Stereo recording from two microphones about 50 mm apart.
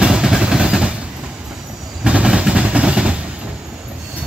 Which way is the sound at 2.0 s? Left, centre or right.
Centre.